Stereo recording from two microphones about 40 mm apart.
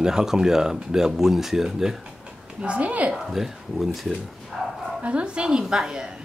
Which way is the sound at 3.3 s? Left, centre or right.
Centre.